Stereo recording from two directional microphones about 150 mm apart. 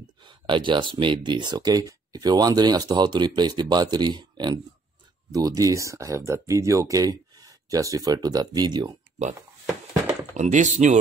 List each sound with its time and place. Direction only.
0.2 s speech: 30° right (ahead or behind)
10.3 s speech: 50° right (ahead or behind)